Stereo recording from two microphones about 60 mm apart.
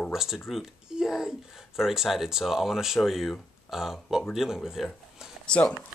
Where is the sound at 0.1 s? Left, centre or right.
Centre.